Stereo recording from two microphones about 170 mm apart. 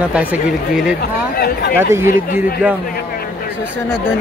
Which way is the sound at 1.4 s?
65° left (ahead or behind).